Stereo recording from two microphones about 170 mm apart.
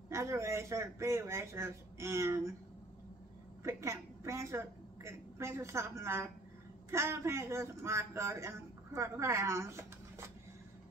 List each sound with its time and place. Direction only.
0.1 s a man's voice: 15° right (ahead or behind)
3.6 s a woman's voice: 15° right (ahead or behind)